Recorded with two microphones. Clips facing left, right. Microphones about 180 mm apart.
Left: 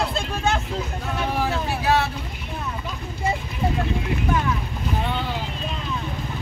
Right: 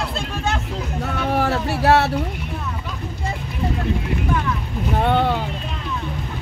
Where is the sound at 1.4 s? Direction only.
70° right (ahead or behind).